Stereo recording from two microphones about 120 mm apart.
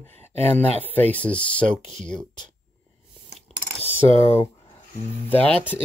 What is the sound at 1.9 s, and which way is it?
Speech, 90° right.